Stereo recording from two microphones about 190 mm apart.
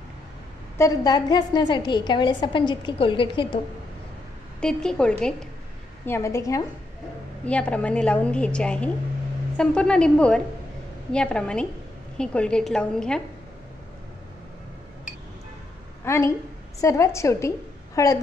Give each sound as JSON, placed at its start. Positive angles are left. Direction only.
{"t": 0.7, "sound": "a woman's voice", "side_deg": 20}
{"t": 4.6, "sound": "a woman's voice", "side_deg": 5}
{"t": 16.0, "sound": "a woman's voice", "side_deg": 15}